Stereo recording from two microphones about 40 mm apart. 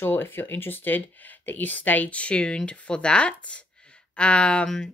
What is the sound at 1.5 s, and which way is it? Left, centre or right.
Speech, left.